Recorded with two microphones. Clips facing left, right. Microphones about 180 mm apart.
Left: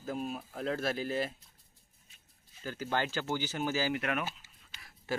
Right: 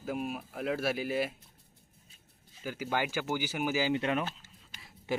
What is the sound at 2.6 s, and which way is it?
Speech, 10° right (ahead or behind).